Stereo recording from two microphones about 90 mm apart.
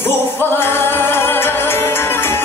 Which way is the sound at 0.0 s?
25° left (ahead or behind).